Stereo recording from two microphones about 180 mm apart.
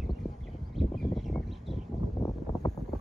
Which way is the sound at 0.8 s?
Centre (ahead or behind).